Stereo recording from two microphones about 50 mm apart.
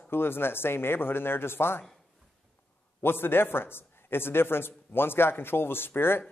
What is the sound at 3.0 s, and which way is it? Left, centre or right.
A man's voice, left.